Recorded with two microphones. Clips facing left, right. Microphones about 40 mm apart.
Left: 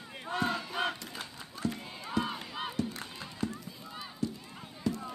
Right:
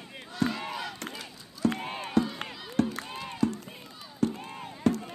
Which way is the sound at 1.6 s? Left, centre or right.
Right.